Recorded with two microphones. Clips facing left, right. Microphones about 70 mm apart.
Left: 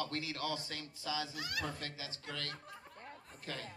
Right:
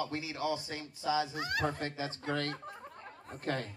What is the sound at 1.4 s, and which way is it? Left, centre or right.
Speech, right.